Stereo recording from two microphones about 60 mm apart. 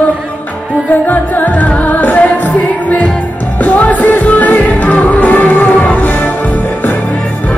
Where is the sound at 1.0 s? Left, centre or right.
Left.